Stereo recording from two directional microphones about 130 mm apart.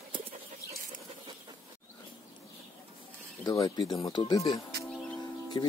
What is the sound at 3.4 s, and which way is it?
Speech, 30° left (ahead or behind).